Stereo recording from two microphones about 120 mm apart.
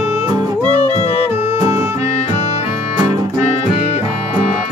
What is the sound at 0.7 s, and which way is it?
Music, 60° left (ahead or behind).